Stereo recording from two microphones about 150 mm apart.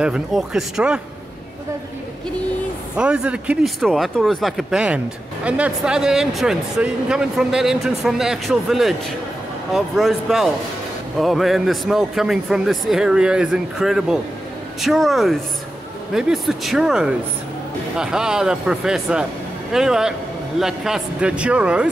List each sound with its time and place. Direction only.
0.0 s speech: 5° right (ahead or behind)
3.0 s speech: 5° right (ahead or behind)